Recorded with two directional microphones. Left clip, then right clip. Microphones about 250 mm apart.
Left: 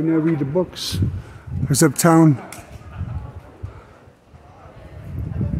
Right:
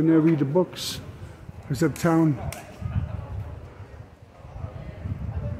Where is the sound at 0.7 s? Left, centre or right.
Left.